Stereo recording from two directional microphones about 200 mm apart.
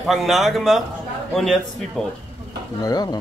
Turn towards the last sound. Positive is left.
turn(degrees=20)  # may be behind; listen again after turning